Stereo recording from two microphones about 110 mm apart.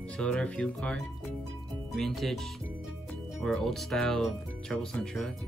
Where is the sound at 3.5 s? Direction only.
Centre (ahead or behind).